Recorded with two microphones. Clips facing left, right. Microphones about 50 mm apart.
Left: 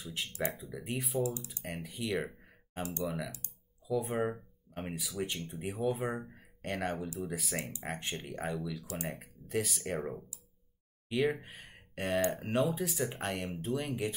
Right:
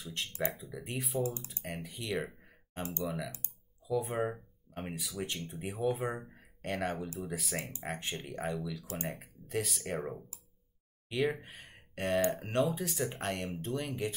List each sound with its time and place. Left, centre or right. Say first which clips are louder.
0.0 s speech: even; centre
1.2 s speech: left 1 dB; right
1.6 s speech: left 2 dB; centre
2.8 s speech: left 1 dB; right
3.8 s speech: even; centre